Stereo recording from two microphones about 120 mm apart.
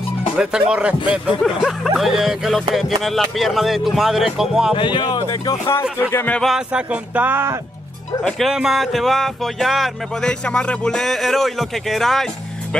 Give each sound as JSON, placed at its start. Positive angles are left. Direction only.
{"t": 0.4, "sound": "speech", "side_deg": -5}
{"t": 4.7, "sound": "speech", "side_deg": 40}
{"t": 5.7, "sound": "speech", "side_deg": 20}
{"t": 6.4, "sound": "speech", "side_deg": -5}
{"t": 8.2, "sound": "speech", "side_deg": 0}